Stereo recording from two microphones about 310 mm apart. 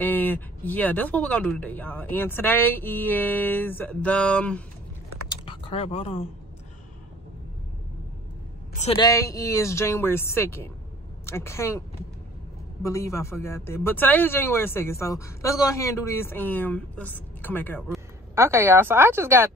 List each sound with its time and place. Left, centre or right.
0.0 s speech: centre
5.3 s typing: centre
8.7 s speech: centre
12.8 s speech: centre
18.3 s speech: centre